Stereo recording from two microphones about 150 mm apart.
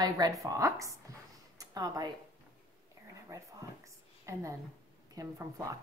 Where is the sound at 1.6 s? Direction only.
25° right (ahead or behind).